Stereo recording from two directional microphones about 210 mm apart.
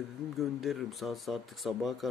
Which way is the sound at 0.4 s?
Centre (ahead or behind).